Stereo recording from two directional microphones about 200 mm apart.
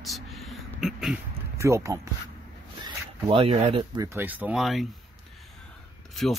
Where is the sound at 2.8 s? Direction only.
25° right (ahead or behind).